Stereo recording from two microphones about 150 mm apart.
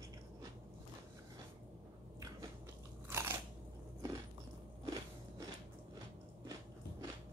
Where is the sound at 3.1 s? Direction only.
15° right (ahead or behind).